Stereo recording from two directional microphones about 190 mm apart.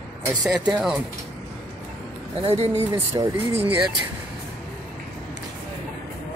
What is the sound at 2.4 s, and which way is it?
Speech, 35° right (ahead or behind).